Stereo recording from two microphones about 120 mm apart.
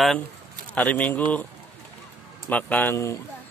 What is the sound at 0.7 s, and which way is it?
Speech, 10° left (ahead or behind).